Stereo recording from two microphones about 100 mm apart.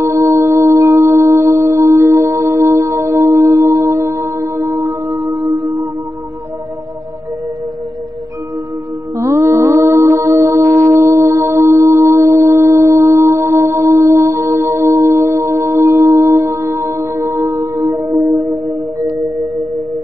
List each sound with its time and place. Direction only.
0.0 s music: 30° right (ahead or behind)
9.1 s music: 30° right (ahead or behind)